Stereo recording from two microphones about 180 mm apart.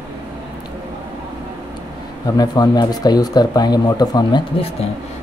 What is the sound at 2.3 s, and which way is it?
Speech, 20° left (ahead or behind).